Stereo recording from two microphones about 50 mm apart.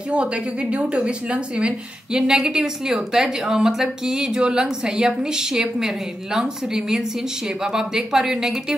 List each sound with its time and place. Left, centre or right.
0.1 s a woman's voice: right